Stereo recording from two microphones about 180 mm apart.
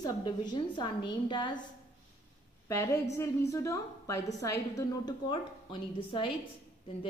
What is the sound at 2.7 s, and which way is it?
A woman's voice, 15° left (ahead or behind).